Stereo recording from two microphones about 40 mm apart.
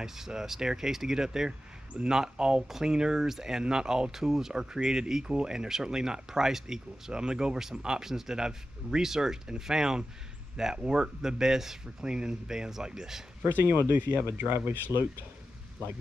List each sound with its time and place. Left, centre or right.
0.0 s speech: centre
13.4 s speech: right